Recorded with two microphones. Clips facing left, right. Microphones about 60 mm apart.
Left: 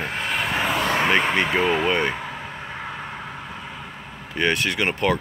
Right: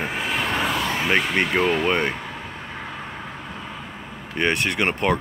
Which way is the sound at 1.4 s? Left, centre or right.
Centre.